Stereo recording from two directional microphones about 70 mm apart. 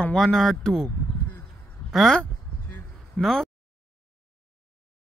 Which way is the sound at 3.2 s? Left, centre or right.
Centre.